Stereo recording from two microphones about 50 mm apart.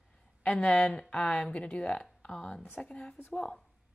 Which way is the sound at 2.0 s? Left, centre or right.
Centre.